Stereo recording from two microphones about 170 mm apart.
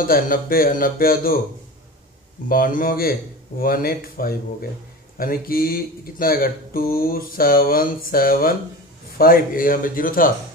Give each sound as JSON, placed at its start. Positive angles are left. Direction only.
{"t": 0.0, "sound": "speech", "side_deg": 55}
{"t": 2.4, "sound": "speech", "side_deg": 55}